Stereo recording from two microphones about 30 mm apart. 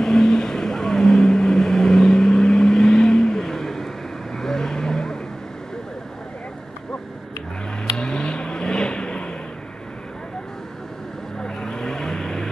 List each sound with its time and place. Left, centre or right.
0.0 s vehicle: left
8.0 s vehicle: left
11.3 s vehicle: left